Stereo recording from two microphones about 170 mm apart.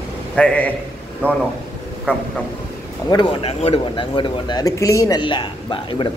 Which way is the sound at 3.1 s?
30° left (ahead or behind).